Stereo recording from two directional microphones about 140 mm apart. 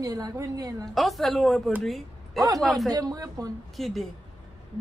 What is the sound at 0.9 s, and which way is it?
A woman's voice, centre (ahead or behind).